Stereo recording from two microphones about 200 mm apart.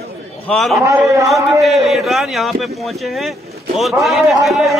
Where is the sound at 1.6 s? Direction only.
Centre (ahead or behind).